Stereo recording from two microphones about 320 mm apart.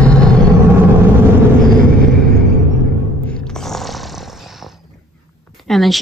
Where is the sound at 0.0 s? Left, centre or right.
Centre.